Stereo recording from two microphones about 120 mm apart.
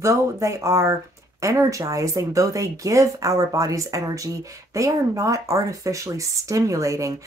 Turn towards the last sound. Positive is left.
turn(degrees=-25)  # may be behind; listen again after turning